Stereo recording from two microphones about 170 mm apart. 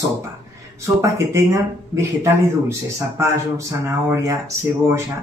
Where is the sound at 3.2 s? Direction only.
15° right (ahead or behind).